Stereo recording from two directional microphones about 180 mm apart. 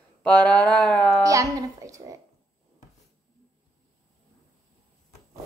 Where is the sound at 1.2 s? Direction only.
20° right (ahead or behind).